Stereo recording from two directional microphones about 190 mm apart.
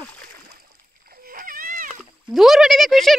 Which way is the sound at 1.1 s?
50° right (ahead or behind).